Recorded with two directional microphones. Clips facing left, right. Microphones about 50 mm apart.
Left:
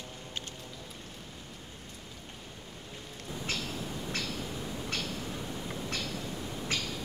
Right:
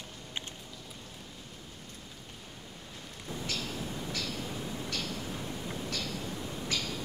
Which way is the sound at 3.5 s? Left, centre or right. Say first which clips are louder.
Left 2 dB; left.